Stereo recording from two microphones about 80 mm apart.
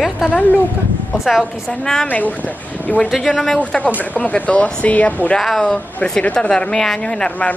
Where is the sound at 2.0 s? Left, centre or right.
Centre.